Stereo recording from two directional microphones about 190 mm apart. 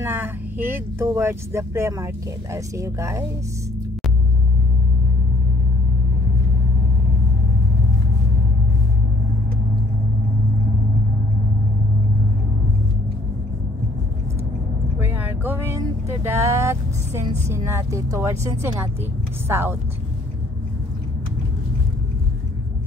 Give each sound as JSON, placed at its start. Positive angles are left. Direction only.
{"t": 0.0, "sound": "speech", "side_deg": -10}
{"t": 15.0, "sound": "vehicle", "side_deg": -10}
{"t": 17.5, "sound": "speech", "side_deg": -15}